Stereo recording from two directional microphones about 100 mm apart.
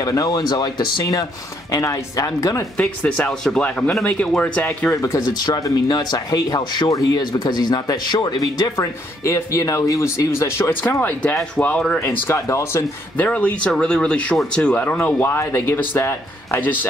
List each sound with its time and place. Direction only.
0.0 s speech: 35° left (ahead or behind)
3.1 s speech: 15° left (ahead or behind)
4.9 s speech: 30° left (ahead or behind)
5.4 s speech: 45° left (ahead or behind); by 12.8 s 30° left (ahead or behind)
13.2 s speech: 15° left (ahead or behind)